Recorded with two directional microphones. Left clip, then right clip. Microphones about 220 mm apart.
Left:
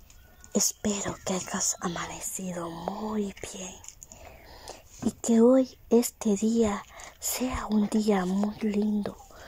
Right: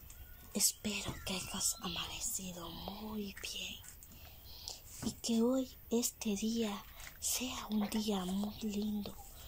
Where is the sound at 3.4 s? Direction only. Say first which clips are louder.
Left 3 dB; 65° left (ahead or behind).